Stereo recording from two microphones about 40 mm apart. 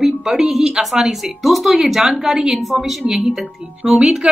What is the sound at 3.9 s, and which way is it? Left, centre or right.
Speech, right.